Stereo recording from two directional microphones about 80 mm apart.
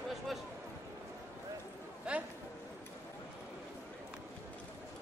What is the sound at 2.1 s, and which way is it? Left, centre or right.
Speech, centre.